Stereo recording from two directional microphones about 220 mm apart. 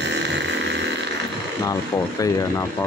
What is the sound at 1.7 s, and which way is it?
Speech, 15° left (ahead or behind).